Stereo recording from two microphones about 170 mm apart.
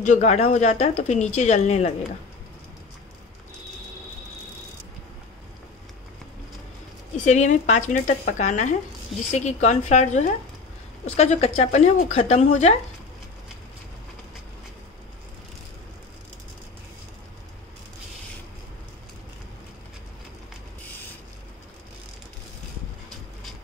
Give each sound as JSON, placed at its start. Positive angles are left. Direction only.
{"t": 0.0, "sound": "speech", "side_deg": 45}
{"t": 7.2, "sound": "speech", "side_deg": 45}